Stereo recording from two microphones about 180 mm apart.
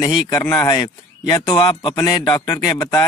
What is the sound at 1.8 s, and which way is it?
Speech, 25° left (ahead or behind).